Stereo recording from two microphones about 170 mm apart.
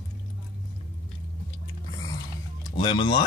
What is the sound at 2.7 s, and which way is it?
Speech, 30° left (ahead or behind).